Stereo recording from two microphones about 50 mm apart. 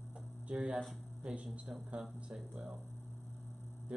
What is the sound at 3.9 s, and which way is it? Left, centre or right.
Mantra, right.